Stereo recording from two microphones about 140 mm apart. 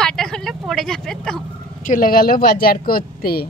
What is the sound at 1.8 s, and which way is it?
Speech, 80° left.